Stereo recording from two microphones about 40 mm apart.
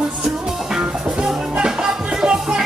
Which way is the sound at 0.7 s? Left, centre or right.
Centre.